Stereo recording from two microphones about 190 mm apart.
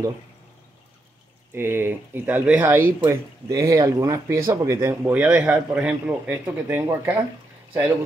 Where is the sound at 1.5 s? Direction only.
10° right (ahead or behind).